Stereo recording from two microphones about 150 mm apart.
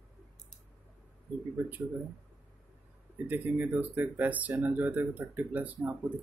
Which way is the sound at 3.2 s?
10° right (ahead or behind).